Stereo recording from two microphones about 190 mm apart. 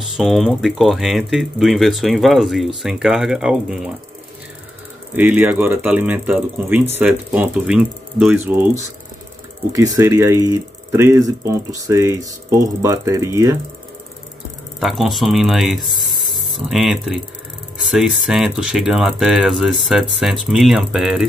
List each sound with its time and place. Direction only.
0.0 s speech: centre (ahead or behind)
5.1 s speech: 10° right (ahead or behind)
14.8 s speech: centre (ahead or behind)